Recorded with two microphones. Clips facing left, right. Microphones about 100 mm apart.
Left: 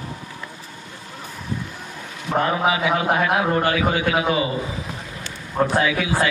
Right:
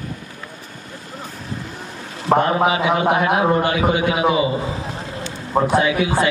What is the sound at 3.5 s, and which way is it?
Speech, 25° right (ahead or behind).